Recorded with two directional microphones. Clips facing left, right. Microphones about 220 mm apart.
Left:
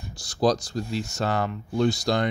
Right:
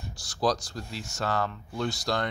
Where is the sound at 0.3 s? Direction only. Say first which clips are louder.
Left 5 dB; 15° left (ahead or behind).